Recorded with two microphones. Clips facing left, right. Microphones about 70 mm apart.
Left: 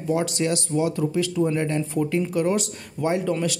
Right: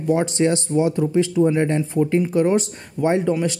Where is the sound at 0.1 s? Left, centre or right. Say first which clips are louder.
Right 5 dB; right.